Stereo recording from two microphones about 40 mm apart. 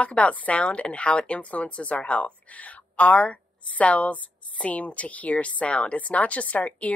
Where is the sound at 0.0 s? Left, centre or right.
Left.